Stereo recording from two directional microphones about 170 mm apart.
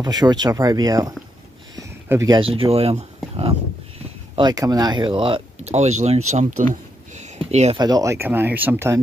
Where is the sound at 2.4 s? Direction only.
35° right (ahead or behind).